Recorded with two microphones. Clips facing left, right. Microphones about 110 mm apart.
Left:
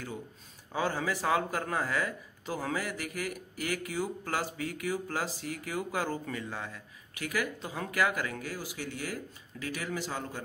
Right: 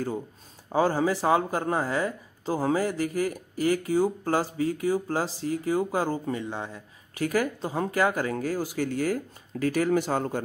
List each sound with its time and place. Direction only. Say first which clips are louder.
0.7 s speech: right 8 dB; 35° right (ahead or behind)
7.2 s speech: right 8 dB; 40° right (ahead or behind)